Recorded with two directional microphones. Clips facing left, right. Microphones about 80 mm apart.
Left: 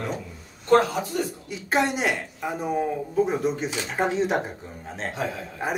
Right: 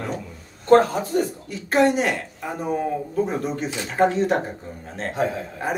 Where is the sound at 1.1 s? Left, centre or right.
Right.